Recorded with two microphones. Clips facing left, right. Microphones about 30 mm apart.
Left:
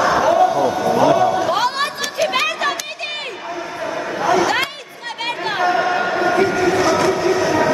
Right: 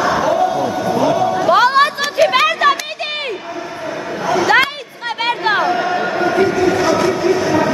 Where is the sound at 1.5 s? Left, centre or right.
Centre.